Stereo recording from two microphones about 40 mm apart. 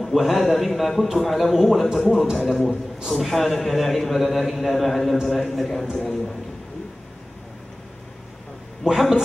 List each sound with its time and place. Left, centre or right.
0.0 s a man's voice: centre
8.8 s speech: centre